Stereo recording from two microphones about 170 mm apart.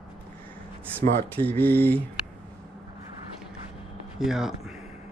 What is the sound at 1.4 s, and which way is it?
Speech, 10° left (ahead or behind).